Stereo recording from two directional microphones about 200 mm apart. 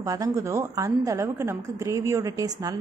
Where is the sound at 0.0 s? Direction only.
15° right (ahead or behind).